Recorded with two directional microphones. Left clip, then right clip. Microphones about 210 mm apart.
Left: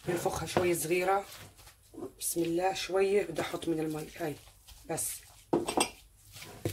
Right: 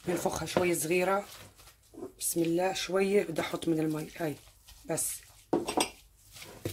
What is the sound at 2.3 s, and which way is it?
Speech, 55° right (ahead or behind).